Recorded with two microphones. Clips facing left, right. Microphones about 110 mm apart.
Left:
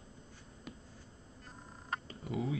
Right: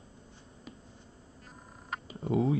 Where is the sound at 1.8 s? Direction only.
5° right (ahead or behind).